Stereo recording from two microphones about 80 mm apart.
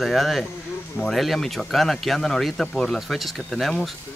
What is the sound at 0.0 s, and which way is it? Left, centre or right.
Speech, centre.